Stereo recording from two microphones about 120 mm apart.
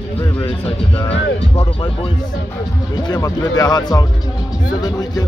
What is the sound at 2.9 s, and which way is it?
Speech, 35° left (ahead or behind).